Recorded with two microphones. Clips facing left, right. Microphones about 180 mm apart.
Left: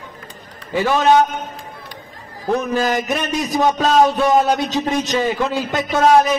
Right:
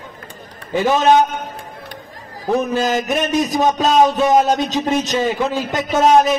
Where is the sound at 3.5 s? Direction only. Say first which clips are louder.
Left 2 dB; 20° right (ahead or behind).